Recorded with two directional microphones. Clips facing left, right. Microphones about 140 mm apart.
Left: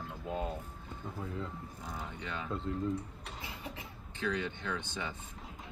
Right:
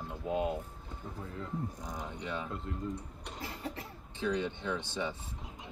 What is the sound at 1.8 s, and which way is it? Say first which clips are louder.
Speech: right 2 dB; 15° right (ahead or behind).